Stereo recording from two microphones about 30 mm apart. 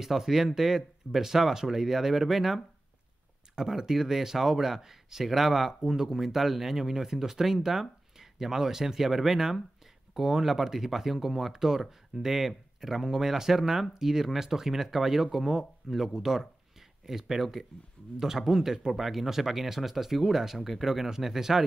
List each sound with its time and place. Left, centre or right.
0.0 s speech: centre